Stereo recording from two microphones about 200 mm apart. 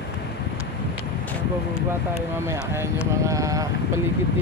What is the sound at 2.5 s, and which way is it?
Speech, 15° right (ahead or behind).